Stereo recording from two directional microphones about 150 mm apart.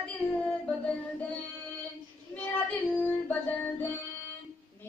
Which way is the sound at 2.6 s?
15° left (ahead or behind).